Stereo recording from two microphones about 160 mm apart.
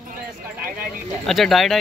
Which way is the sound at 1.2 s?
Centre (ahead or behind).